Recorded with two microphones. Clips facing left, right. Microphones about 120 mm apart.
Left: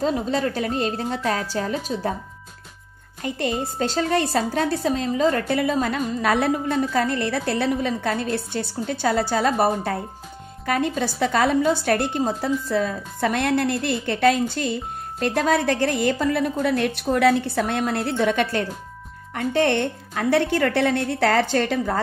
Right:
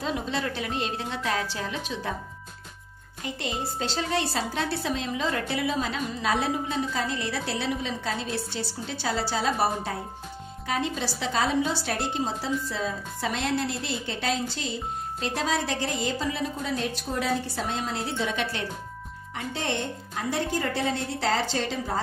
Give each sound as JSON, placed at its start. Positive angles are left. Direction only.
{"t": 0.0, "sound": "a woman's voice", "side_deg": 40}
{"t": 3.2, "sound": "a woman's voice", "side_deg": 50}